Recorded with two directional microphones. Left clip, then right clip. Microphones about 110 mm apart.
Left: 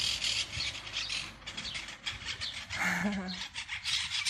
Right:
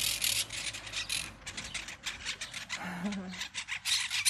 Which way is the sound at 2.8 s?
40° left (ahead or behind).